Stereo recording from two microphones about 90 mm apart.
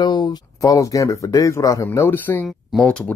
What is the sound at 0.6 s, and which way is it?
Speech, 40° left (ahead or behind).